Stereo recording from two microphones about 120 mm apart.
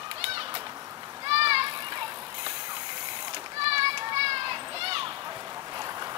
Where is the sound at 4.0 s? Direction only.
45° right (ahead or behind).